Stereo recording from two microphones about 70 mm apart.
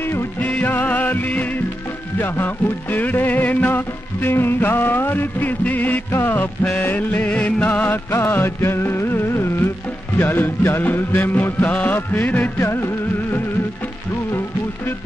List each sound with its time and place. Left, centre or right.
0.0 s music: left
0.5 s music: left
6.1 s music of bollywood: left
6.8 s music: left
8.1 s music of bollywood: left